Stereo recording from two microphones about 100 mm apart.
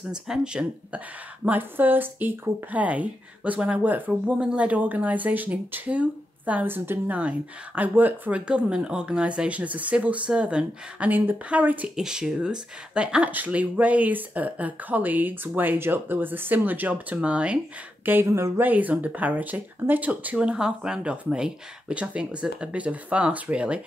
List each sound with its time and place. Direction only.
0.1 s speech: 10° right (ahead or behind)
18.0 s speech: 25° right (ahead or behind)
18.7 s speech: 15° right (ahead or behind)